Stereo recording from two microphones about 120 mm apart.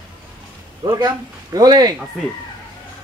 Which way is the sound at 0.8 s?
30° right (ahead or behind).